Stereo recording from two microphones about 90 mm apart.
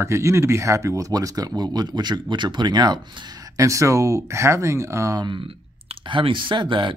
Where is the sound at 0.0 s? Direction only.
35° right (ahead or behind); by 3.3 s 50° right (ahead or behind).